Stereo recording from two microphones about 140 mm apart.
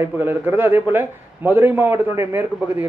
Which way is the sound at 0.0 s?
15° right (ahead or behind).